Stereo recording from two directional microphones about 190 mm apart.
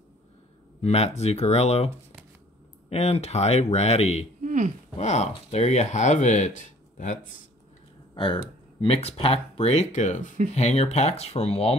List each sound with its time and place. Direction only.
0.7 s speech: 35° left (ahead or behind)
2.9 s speech: 35° left (ahead or behind)
4.4 s a sound: 40° right (ahead or behind)
4.9 s speech: 35° left (ahead or behind)
8.1 s speech: 25° left (ahead or behind)